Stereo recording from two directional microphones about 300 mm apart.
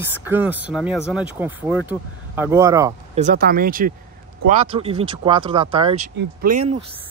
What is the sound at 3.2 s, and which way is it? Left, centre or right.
Speech, right.